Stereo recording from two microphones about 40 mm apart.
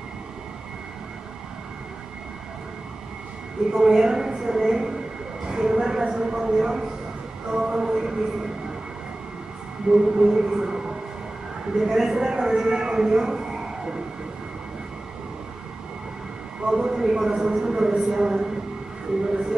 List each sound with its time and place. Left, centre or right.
3.7 s a man's voice: centre
9.9 s a man's voice: centre
16.6 s a man's voice: centre